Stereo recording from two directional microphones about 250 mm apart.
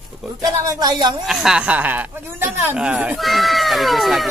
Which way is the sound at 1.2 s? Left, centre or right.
Centre.